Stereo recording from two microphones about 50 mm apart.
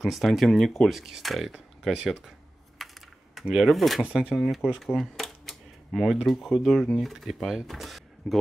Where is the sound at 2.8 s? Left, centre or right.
Centre.